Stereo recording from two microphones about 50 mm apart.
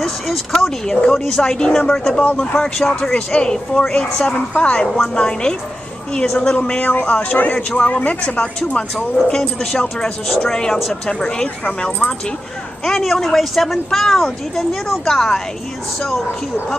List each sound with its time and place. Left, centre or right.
0.0 s speech: centre
0.8 s speech: centre
6.8 s speech: left
8.7 s speech: centre
12.8 s speech: centre